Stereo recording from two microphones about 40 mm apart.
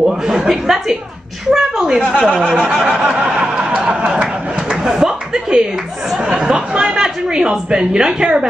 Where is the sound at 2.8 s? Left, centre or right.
Right.